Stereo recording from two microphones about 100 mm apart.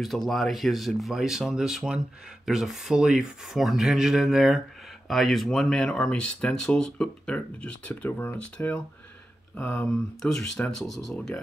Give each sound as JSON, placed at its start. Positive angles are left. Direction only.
{"t": 0.0, "sound": "speech", "side_deg": 0}
{"t": 9.8, "sound": "speech", "side_deg": 5}